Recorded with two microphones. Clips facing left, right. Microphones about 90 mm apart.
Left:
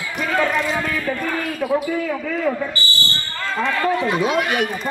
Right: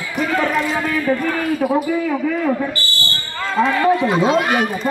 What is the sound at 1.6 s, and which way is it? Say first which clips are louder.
Speech: right 1 dB; 35° right (ahead or behind).